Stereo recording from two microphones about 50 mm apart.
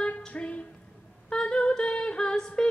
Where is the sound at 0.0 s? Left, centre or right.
Left.